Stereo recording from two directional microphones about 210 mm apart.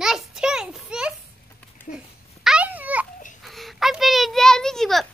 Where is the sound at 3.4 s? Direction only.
Centre (ahead or behind).